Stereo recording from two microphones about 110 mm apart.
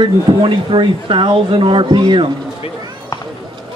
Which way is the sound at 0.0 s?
50° right (ahead or behind).